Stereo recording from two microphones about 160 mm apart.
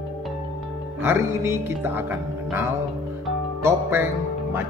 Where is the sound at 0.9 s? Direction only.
15° right (ahead or behind).